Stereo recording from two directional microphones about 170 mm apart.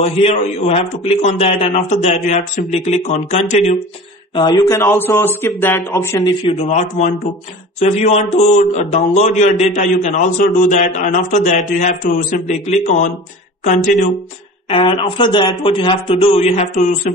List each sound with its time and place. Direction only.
0.0 s a man's voice: 35° left (ahead or behind)
4.3 s speech: 25° left (ahead or behind)
6.5 s a man's voice: 40° left (ahead or behind)
14.7 s a man's voice: 30° left (ahead or behind)